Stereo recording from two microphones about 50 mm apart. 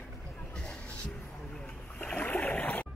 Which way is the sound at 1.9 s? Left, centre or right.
Left.